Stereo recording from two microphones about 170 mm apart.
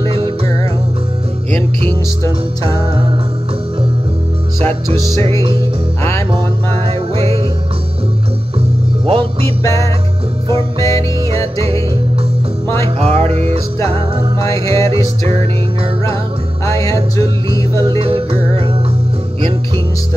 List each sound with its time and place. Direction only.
0.1 s music: 30° right (ahead or behind)
4.6 s music: 20° left (ahead or behind)
6.9 s music: 35° right (ahead or behind)
9.0 s music: 35° right (ahead or behind)
9.6 s music: 15° left (ahead or behind)
11.2 s music: 35° right (ahead or behind)
12.6 s music: 15° left (ahead or behind)
13.0 s music: 40° right (ahead or behind)
14.4 s music: 20° left (ahead or behind)
14.9 s music: 35° right (ahead or behind)
16.6 s music: 20° left (ahead or behind)
17.8 s music: 30° right (ahead or behind)